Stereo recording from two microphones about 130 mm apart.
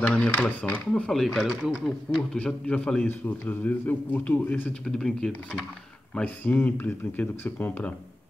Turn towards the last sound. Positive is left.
turn(degrees=15)  # may be behind; listen again after turning